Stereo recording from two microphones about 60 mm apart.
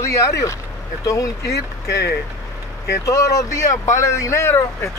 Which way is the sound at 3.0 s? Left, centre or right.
Left.